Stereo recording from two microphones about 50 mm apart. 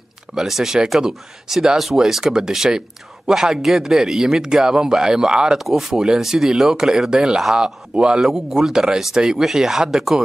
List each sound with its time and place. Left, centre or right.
0.3 s speech: centre
5.6 s speech: centre
8.2 s speech: centre